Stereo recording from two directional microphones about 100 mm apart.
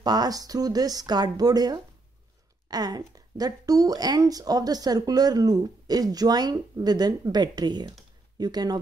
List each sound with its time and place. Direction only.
0.0 s speech: 40° right (ahead or behind)